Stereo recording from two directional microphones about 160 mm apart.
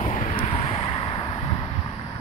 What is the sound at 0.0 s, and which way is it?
Vehicle, 55° left (ahead or behind).